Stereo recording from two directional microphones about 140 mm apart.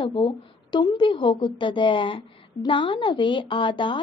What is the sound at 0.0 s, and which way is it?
A woman's voice, 35° left (ahead or behind).